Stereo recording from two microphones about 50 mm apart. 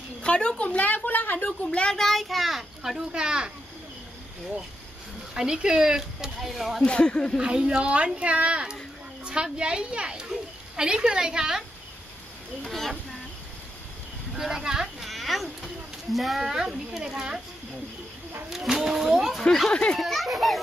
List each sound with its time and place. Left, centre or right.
0.2 s a woman's voice: left
1.6 s speech: left
2.0 s a child's voice: centre
3.1 s speech: centre
5.3 s a child's voice: centre
6.9 s speech: centre
7.3 s speech: centre
12.6 s a child's voice: centre
14.3 s a sound: centre
16.9 s speech: centre
18.5 s a sound: centre
19.7 s speech: left
20.0 s a child's voice: centre